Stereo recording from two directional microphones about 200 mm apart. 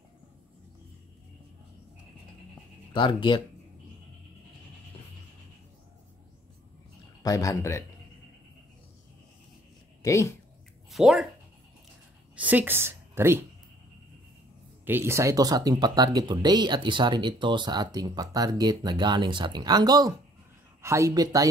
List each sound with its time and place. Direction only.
2.9 s speech: 25° left (ahead or behind)
7.2 s a man's voice: 15° left (ahead or behind)
10.0 s a man's voice: 15° left (ahead or behind)
10.9 s speech: centre (ahead or behind)
12.4 s a woman's voice: 10° right (ahead or behind)
14.9 s speech: 10° right (ahead or behind)